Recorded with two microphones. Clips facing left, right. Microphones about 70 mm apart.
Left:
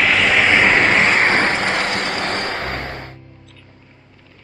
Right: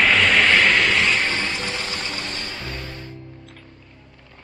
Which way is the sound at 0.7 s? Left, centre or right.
Left.